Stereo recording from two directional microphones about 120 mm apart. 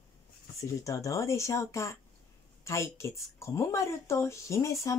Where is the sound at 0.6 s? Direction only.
25° left (ahead or behind).